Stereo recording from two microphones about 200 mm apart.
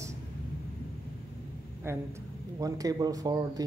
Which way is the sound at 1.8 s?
10° right (ahead or behind).